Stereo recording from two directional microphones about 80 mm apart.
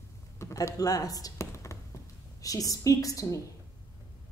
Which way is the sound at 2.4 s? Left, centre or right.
Left.